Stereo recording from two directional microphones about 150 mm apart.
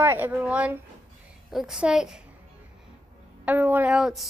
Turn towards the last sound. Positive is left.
turn(degrees=-5)  # may be behind; listen again after turning